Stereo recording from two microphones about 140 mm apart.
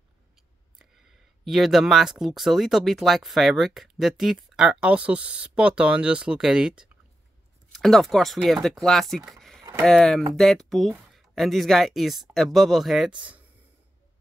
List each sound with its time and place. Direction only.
0.7 s speech: centre (ahead or behind)
9.6 s a sound: 20° right (ahead or behind)
9.8 s speech: 5° left (ahead or behind)